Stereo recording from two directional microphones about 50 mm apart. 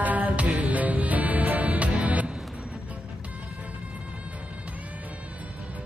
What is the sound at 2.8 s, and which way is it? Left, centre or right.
Music, right.